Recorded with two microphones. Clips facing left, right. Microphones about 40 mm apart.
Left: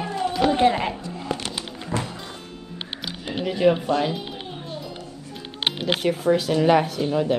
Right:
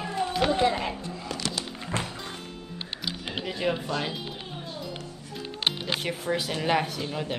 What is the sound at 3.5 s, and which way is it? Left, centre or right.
Speech, centre.